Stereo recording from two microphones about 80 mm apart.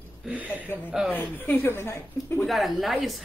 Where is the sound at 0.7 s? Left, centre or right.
Left.